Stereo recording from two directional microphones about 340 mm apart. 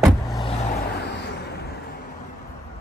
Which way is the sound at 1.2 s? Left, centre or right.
Left.